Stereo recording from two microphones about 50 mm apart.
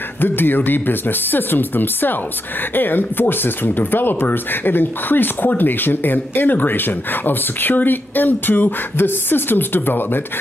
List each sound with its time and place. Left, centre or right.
0.2 s speech: left